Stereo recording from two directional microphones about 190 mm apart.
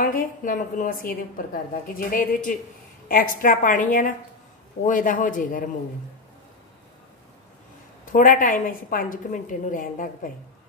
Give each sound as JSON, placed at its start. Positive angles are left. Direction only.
{"t": 0.0, "sound": "a woman's voice", "side_deg": 45}
{"t": 8.0, "sound": "a woman's voice", "side_deg": 45}